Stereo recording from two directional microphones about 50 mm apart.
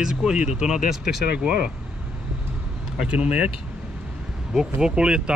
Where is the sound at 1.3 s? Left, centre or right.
Right.